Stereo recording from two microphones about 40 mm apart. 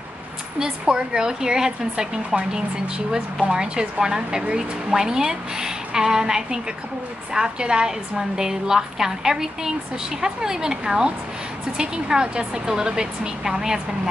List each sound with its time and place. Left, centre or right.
0.6 s a woman's voice: centre